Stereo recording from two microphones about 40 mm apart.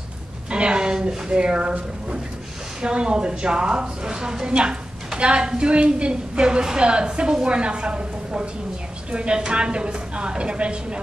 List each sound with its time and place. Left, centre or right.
0.5 s a woman's voice: right
2.8 s a woman's voice: right